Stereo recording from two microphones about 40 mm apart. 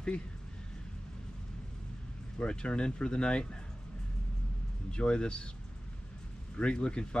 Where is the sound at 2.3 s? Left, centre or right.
Left.